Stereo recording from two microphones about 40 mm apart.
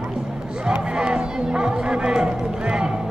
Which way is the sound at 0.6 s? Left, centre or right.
Right.